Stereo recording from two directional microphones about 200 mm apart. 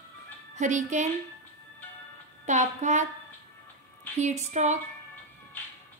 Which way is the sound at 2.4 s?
35° right (ahead or behind).